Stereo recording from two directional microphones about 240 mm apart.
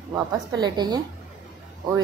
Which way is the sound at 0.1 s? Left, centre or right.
Centre.